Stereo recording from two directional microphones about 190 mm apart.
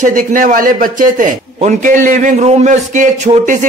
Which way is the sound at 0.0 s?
45° right (ahead or behind).